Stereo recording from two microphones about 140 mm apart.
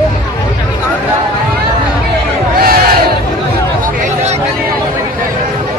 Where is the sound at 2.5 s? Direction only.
90° right.